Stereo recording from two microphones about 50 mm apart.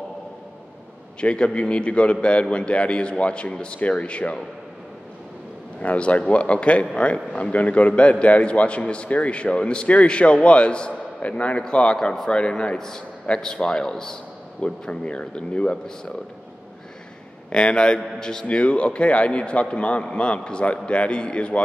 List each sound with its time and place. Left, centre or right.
1.2 s a man's voice: left
5.8 s a man's voice: left
17.5 s a man's voice: centre
18.6 s a man's voice: left